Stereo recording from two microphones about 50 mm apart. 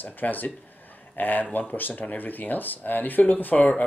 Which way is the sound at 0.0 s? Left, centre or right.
Left.